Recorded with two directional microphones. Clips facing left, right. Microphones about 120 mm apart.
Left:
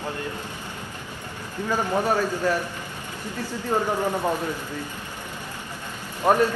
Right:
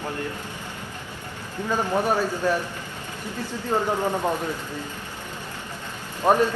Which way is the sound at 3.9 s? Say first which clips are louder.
Even; 15° right (ahead or behind).